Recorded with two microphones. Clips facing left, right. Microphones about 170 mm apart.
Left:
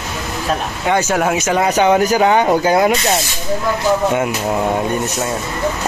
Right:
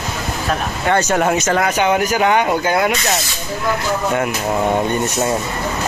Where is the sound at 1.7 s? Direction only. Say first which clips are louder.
Left 3 dB; 35° left (ahead or behind).